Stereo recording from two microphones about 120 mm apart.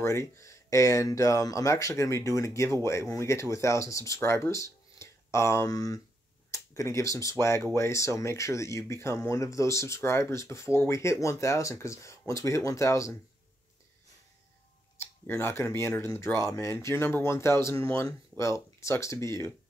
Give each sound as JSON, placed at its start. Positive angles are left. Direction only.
{"t": 0.0, "sound": "speech", "side_deg": 25}
{"t": 15.0, "sound": "speech", "side_deg": 20}